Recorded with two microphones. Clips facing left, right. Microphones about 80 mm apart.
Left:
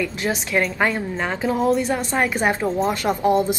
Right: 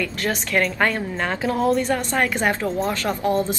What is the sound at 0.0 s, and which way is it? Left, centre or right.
Speech, centre.